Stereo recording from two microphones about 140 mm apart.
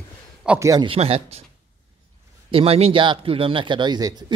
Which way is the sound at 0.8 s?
45° right (ahead or behind).